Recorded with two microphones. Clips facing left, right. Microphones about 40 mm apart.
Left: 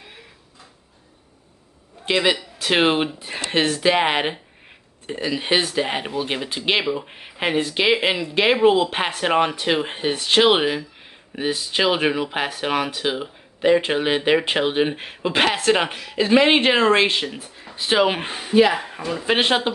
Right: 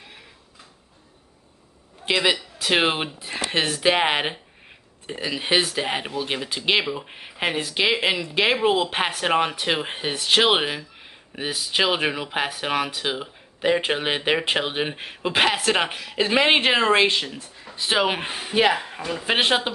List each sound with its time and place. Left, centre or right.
2.0 s a man's voice: centre
13.7 s speech: centre
18.5 s speech: right
19.0 s speech: centre